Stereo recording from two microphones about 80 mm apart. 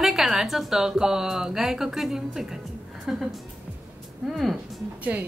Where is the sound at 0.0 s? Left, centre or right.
Centre.